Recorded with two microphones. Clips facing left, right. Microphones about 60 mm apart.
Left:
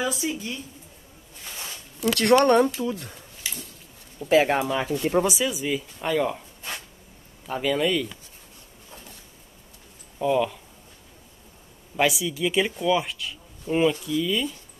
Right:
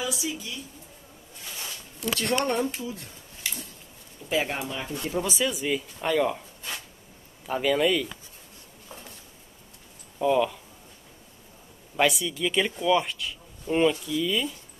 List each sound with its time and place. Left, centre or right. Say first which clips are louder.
0.0 s speech: left 4 dB; left
2.1 s speech: left 9 dB; left
4.3 s speech: left 8 dB; left
5.2 s speech: left 2 dB; centre
7.4 s speech: right 1 dB; centre
10.1 s speech: even; centre
12.0 s speech: left 1 dB; centre